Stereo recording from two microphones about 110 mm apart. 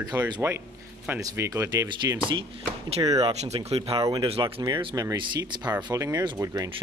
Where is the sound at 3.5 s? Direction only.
65° right (ahead or behind).